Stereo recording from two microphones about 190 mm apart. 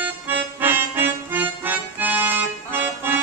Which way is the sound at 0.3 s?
10° right (ahead or behind).